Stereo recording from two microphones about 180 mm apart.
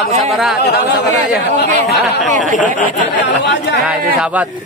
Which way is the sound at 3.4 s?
75° left (ahead or behind).